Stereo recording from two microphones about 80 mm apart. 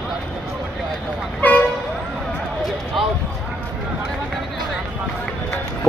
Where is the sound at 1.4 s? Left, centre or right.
Left.